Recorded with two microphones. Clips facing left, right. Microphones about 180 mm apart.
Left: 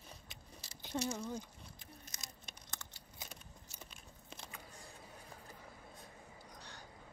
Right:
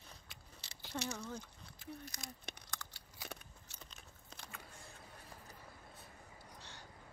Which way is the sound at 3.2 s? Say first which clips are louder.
Right 4 dB; 20° left (ahead or behind).